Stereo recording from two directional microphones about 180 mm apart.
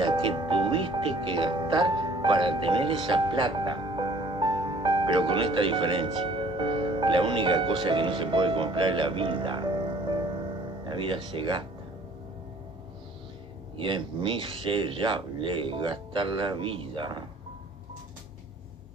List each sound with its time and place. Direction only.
0.0 s speech: 30° right (ahead or behind)
13.7 s speech: 30° right (ahead or behind)